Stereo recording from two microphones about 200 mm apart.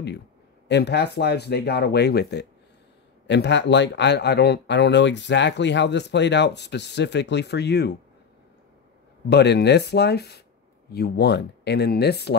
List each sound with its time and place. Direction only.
0.7 s speech: 60° left (ahead or behind)
9.3 s speech: 55° left (ahead or behind)